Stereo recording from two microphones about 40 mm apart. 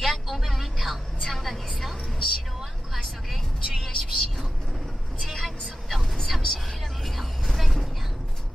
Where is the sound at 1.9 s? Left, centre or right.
Centre.